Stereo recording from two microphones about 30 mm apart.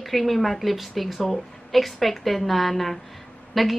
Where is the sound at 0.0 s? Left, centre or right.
Centre.